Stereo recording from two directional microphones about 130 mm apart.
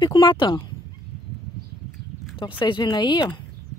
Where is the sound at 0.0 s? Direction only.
35° left (ahead or behind).